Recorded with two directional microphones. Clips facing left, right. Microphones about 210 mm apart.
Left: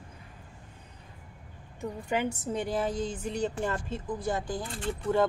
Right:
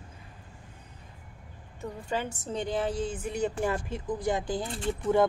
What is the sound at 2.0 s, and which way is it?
A woman's voice, 15° left (ahead or behind).